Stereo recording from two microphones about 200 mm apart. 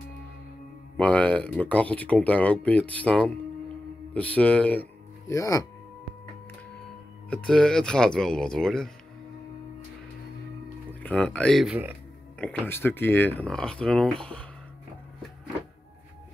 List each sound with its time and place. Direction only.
0.9 s speech: 5° left (ahead or behind)
7.2 s speech: 5° left (ahead or behind)
10.9 s speech: 5° left (ahead or behind); by 12.0 s 10° right (ahead or behind)
12.4 s speech: 10° left (ahead or behind)